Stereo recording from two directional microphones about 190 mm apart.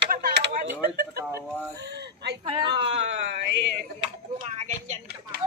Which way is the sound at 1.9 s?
65° right (ahead or behind).